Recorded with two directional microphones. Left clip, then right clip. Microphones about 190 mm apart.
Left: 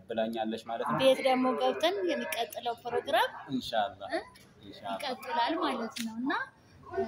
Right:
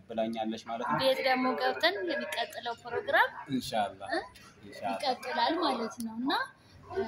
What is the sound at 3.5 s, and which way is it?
Speech, 35° right (ahead or behind).